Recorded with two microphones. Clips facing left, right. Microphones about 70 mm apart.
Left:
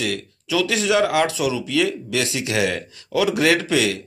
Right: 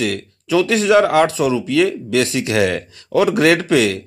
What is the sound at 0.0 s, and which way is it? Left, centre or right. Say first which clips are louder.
A man's voice: right 4 dB; right.